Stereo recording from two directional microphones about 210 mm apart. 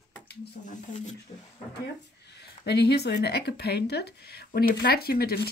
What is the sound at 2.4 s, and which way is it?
Speech, 50° left (ahead or behind).